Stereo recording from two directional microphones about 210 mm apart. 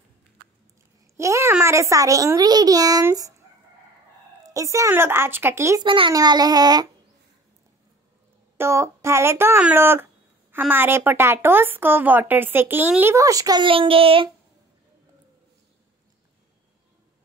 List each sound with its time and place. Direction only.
1.1 s a child's voice: 15° right (ahead or behind)
4.4 s speech: 15° right (ahead or behind)
8.5 s speech: 15° right (ahead or behind)